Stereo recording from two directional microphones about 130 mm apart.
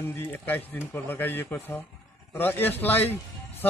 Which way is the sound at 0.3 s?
15° left (ahead or behind).